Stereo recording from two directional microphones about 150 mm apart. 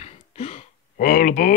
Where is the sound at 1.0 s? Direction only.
70° left (ahead or behind).